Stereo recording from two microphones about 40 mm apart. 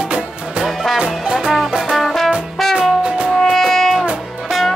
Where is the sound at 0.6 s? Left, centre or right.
Centre.